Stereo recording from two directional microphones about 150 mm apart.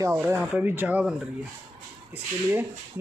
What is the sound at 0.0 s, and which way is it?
Speech, 20° right (ahead or behind).